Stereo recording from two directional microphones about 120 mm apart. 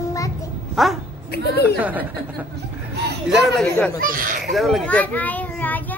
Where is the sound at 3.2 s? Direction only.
Centre (ahead or behind).